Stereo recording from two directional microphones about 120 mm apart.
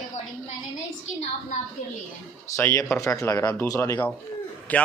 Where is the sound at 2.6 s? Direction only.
20° left (ahead or behind).